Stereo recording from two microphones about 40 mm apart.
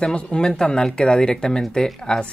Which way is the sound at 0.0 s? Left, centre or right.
Left.